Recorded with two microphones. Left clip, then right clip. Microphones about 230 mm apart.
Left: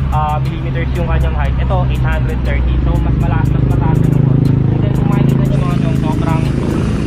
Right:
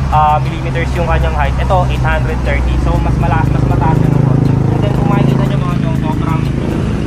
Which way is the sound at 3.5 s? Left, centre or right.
Right.